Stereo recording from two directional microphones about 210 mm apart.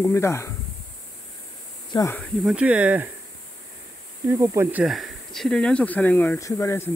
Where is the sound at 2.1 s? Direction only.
5° right (ahead or behind).